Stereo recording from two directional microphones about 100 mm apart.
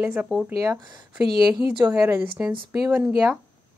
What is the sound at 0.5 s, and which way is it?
Speech, 30° right (ahead or behind).